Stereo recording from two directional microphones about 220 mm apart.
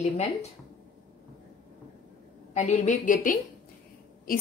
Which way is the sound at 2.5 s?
30° left (ahead or behind).